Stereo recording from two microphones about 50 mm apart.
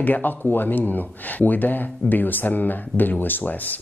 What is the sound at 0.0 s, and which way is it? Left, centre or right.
Speech, left.